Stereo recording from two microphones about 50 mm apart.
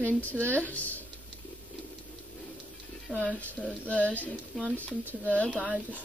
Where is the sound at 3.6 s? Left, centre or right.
Centre.